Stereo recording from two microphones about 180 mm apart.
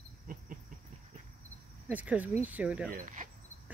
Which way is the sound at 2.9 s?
45° right (ahead or behind).